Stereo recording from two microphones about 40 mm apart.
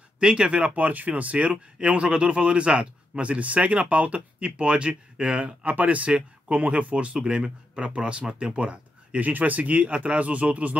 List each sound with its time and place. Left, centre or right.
0.2 s speech: right